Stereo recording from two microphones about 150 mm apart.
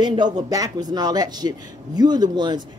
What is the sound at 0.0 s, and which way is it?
Speech, 30° right (ahead or behind).